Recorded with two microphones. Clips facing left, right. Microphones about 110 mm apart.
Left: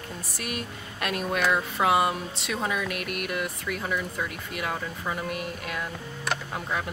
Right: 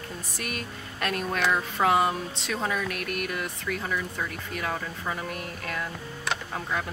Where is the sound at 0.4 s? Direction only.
5° left (ahead or behind).